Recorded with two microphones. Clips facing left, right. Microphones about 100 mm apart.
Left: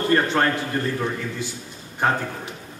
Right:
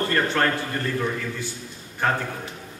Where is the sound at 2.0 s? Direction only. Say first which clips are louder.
Left 2 dB; 15° left (ahead or behind).